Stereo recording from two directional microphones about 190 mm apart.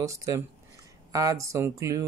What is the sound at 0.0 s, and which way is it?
Speech, 15° right (ahead or behind).